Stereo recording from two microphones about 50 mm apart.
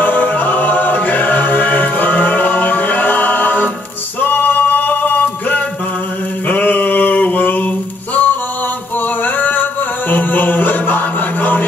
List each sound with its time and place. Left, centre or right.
0.0 s music: left
4.2 s male singing: left
6.4 s a sound: left
8.9 s music: left